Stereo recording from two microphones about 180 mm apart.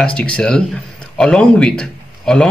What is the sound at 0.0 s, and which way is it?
Speech, 5° left (ahead or behind).